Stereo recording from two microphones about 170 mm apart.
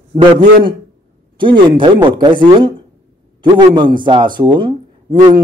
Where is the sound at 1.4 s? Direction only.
30° right (ahead or behind).